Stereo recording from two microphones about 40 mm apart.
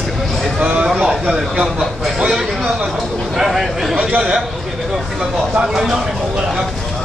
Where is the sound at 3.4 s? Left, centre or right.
Centre.